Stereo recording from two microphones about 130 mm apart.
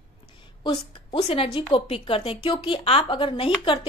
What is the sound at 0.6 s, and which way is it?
A woman's voice, 45° left (ahead or behind).